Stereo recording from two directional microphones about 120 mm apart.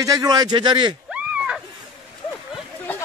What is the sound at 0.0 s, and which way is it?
Speech, 30° right (ahead or behind).